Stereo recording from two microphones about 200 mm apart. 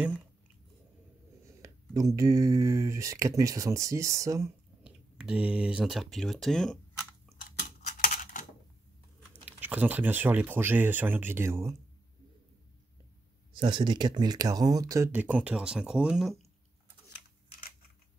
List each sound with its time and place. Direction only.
1.4 s speech: 15° right (ahead or behind)
4.8 s speech: 5° right (ahead or behind)
7.3 s a sound: 50° left (ahead or behind)
9.5 s speech: 10° right (ahead or behind)
13.5 s speech: 20° right (ahead or behind); by 16.3 s 5° right (ahead or behind)